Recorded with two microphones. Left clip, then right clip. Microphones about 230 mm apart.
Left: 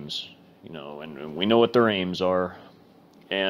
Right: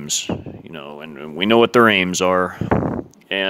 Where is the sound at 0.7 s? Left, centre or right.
Right.